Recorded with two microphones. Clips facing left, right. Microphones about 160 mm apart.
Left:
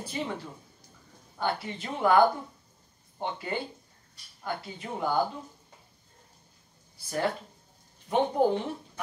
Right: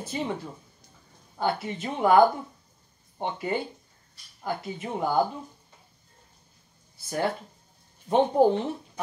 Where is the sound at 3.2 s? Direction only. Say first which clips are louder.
Right 4 dB; 25° right (ahead or behind).